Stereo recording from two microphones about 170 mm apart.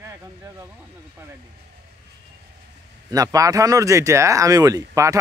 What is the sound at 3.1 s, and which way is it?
Speech, 20° right (ahead or behind).